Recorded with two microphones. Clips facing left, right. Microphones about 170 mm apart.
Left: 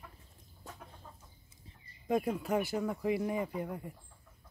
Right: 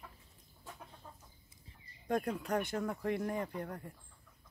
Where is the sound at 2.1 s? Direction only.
5° left (ahead or behind).